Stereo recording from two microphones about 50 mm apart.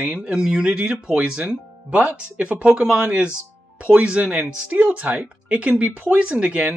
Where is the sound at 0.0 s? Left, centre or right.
Right.